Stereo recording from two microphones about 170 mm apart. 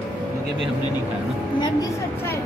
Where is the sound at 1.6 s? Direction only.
20° left (ahead or behind).